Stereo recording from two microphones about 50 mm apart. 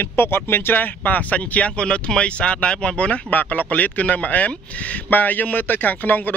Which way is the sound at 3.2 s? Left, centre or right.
Left.